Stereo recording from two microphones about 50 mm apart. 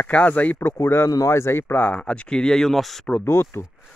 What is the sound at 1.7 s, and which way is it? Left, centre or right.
Speech, left.